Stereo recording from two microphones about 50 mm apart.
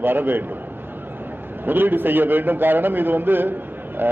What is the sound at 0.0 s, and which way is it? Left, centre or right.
Speech, right.